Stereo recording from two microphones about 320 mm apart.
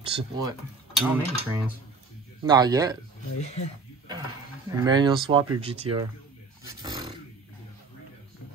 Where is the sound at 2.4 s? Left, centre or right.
Centre.